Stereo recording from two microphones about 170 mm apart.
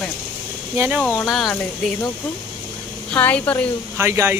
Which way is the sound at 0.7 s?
10° right (ahead or behind).